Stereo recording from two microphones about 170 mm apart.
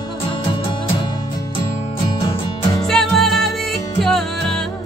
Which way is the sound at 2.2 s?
25° left (ahead or behind).